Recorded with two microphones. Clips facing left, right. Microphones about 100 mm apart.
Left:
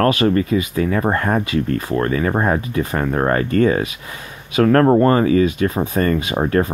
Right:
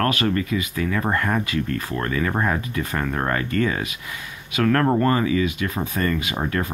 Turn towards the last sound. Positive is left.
turn(degrees=30)  # may be behind; listen again after turning